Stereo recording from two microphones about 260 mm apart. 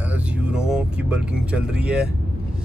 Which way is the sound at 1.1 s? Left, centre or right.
Centre.